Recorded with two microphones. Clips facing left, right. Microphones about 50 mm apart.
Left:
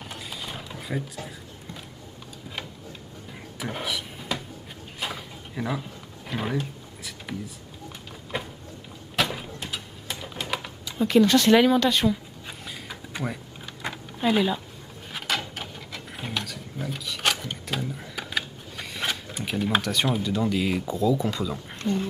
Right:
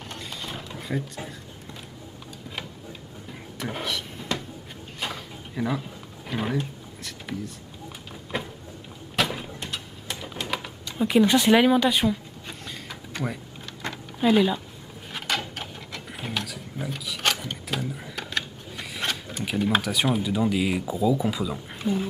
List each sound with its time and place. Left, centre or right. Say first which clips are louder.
0.1 s mechanisms: right 1 dB; centre
2.5 s a sound: even; centre
9.6 s typing: even; centre
11.1 s speech: left 1 dB; centre
13.2 s speech: right 1 dB; centre
13.8 s a sound: right 2 dB; centre
15.1 s mechanisms: even; centre